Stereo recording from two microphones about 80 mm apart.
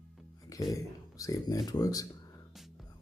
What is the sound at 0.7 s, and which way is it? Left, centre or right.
Speech, left.